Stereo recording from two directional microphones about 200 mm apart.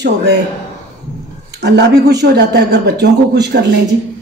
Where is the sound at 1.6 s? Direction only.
60° right (ahead or behind).